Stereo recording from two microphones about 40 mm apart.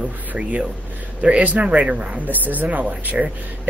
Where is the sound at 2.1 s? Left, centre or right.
Right.